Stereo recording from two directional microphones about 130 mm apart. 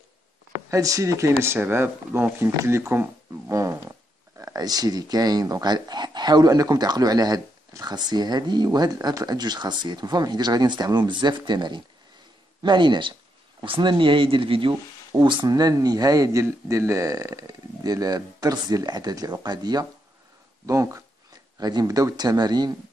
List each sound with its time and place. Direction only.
0.7 s speech: 25° right (ahead or behind)